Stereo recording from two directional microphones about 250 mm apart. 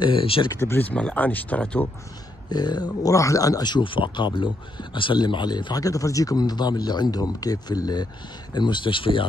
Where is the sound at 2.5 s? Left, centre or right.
Centre.